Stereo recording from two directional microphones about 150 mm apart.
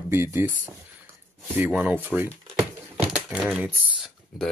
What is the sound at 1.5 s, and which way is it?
Speech, 10° right (ahead or behind).